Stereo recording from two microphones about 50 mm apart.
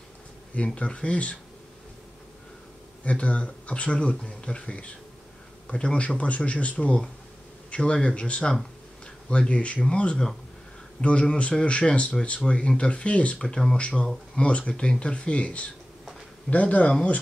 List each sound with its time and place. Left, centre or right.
0.7 s speech: left
3.0 s speech: left
13.4 s speech: centre
13.7 s speech: left